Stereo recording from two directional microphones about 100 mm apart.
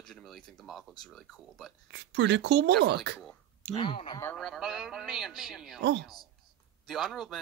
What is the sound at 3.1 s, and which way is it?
Speech, 15° left (ahead or behind).